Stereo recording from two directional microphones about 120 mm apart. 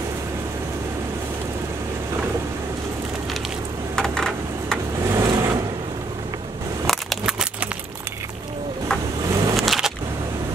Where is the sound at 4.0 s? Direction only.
5° left (ahead or behind).